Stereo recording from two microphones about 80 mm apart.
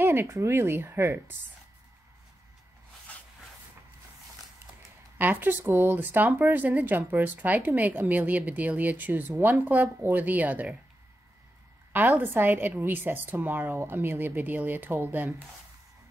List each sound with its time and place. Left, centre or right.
0.0 s speech: right
5.2 s speech: right
12.1 s speech: right